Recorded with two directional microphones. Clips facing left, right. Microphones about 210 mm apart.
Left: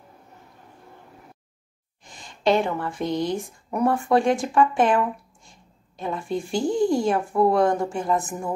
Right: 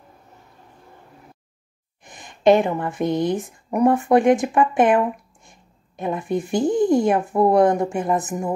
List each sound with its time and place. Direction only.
2.0 s speech: 20° right (ahead or behind)